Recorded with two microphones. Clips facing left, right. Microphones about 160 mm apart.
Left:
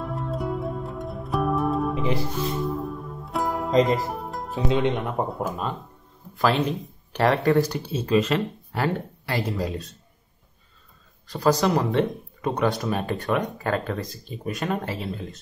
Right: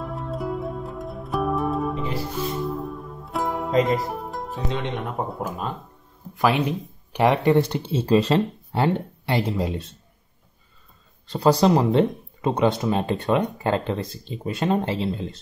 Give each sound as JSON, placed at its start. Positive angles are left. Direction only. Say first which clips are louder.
{"t": 0.0, "sound": "music", "louder": "even", "side_deg": 0}
{"t": 6.3, "sound": "speech", "louder": "right 1 dB", "side_deg": -15}
{"t": 11.2, "sound": "speech", "louder": "right 3 dB", "side_deg": -30}